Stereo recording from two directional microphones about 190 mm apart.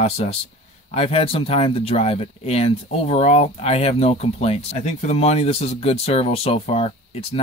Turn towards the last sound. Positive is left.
turn(degrees=30)  # may be behind; listen again after turning